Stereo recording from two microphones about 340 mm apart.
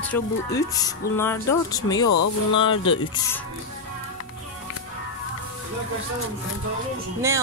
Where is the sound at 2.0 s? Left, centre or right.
Left.